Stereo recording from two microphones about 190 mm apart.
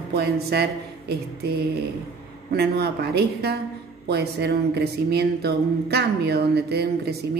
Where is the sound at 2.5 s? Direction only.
60° right (ahead or behind).